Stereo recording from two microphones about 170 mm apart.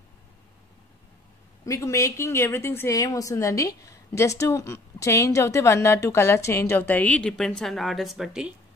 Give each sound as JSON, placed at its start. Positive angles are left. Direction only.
{"t": 1.7, "sound": "a woman's voice", "side_deg": 15}